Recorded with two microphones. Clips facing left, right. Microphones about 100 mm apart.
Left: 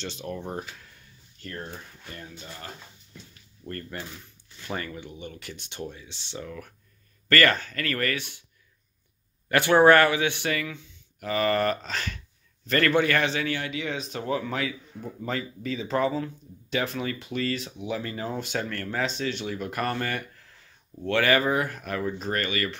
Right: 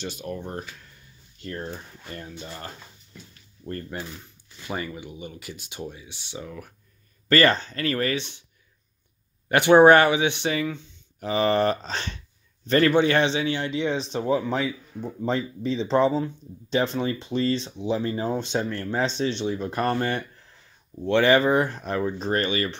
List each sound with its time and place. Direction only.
0.2 s speech: centre (ahead or behind)
0.5 s speech: 10° left (ahead or behind)
1.4 s speech: 25° right (ahead or behind)
2.0 s speech: 40° right (ahead or behind)
3.6 s speech: 20° right (ahead or behind)
7.2 s speech: 25° right (ahead or behind)
9.5 s speech: 20° right (ahead or behind)
14.2 s speech: 15° right (ahead or behind)